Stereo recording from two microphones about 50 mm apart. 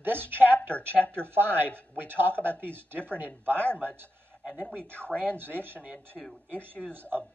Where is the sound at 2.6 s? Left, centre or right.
Right.